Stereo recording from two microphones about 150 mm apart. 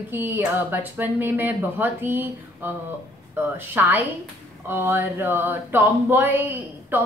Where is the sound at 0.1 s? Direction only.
10° right (ahead or behind).